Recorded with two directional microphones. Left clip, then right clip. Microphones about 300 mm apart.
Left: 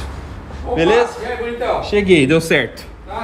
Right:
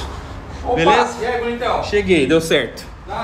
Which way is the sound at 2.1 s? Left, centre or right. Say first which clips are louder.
Left 3 dB; centre.